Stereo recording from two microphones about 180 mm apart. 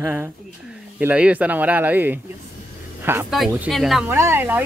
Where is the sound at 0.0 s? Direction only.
10° right (ahead or behind).